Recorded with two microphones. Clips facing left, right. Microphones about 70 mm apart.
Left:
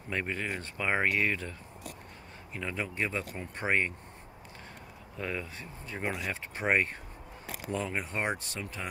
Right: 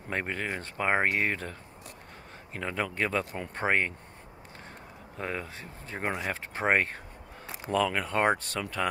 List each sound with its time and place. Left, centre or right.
0.1 s speech: right
3.5 s speech: right
5.1 s speech: right
5.6 s speech: right
6.0 s speech: right
7.7 s speech: right
8.5 s speech: right